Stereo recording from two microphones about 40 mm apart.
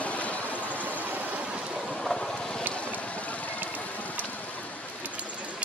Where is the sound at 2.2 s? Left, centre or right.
Centre.